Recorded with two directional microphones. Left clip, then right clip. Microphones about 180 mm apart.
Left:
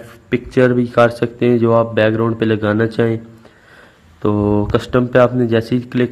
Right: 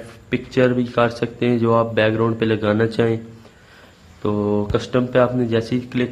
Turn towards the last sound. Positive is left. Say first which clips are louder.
# left 5 dB
turn(degrees=25)  # may be behind; listen again after turning